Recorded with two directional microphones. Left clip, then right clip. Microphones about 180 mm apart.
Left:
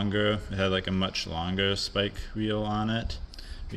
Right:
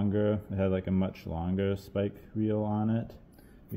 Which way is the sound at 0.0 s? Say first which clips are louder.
Left 2 dB; 10° left (ahead or behind).